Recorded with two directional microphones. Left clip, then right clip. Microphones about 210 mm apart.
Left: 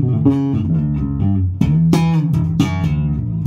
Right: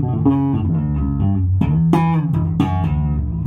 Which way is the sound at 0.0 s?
50° left (ahead or behind).